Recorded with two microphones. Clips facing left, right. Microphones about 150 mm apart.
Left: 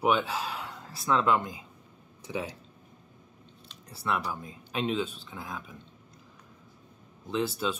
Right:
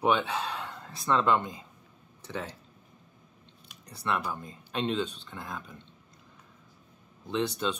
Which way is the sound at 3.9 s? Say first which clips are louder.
Even; 5° left (ahead or behind).